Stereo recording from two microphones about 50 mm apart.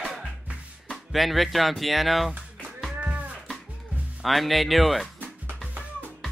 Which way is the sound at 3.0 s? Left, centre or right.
Right.